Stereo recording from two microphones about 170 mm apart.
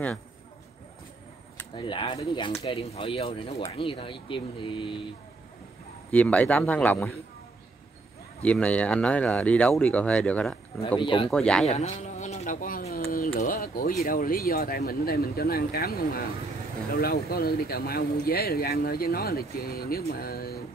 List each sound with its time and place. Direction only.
1.8 s speech: 30° left (ahead or behind)
6.1 s speech: 10° left (ahead or behind)
8.4 s speech: 5° left (ahead or behind)
11.0 s speech: 30° left (ahead or behind)
11.2 s speech: 5° left (ahead or behind)
11.7 s speech: 40° left (ahead or behind); by 20.6 s 65° left (ahead or behind)